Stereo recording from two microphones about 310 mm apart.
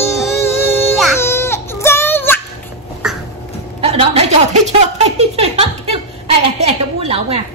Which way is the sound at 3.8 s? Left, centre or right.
Centre.